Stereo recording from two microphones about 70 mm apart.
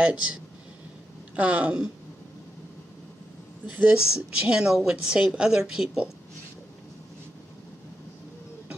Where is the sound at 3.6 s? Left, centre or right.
Centre.